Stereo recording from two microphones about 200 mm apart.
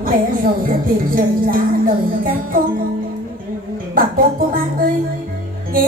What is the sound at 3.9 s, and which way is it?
Music, 45° right (ahead or behind).